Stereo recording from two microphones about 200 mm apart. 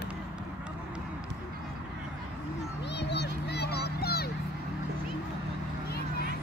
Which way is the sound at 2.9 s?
55° left (ahead or behind).